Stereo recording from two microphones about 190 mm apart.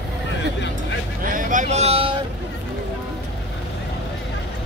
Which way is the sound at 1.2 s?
45° right (ahead or behind).